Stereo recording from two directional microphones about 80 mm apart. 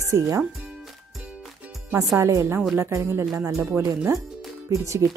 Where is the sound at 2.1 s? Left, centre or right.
Right.